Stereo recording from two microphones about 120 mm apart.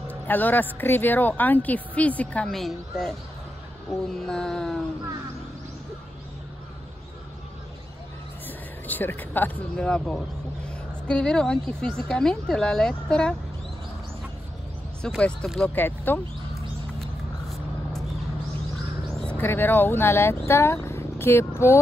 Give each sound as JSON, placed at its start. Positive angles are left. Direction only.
{"t": 0.1, "sound": "speech", "side_deg": 15}
{"t": 4.1, "sound": "a sound", "side_deg": 5}
{"t": 8.5, "sound": "speech", "side_deg": 15}
{"t": 15.0, "sound": "speech", "side_deg": 5}
{"t": 15.7, "sound": "speech", "side_deg": 15}
{"t": 17.0, "sound": "vehicle", "side_deg": 5}
{"t": 19.1, "sound": "a sound", "side_deg": 10}
{"t": 19.4, "sound": "speech", "side_deg": 20}